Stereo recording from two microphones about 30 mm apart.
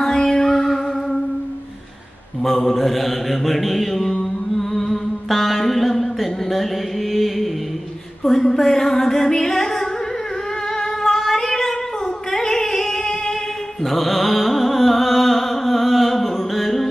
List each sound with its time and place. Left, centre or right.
0.0 s music: centre
2.4 s mantra: centre
4.6 s music: centre
8.2 s a sound: centre
10.8 s singing: centre
12.3 s music: centre
13.8 s music: centre